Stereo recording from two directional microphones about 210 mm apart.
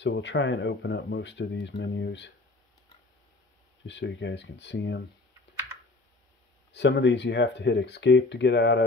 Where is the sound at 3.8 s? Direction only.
60° left (ahead or behind).